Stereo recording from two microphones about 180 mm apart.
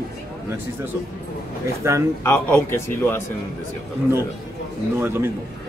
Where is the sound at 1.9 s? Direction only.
15° right (ahead or behind).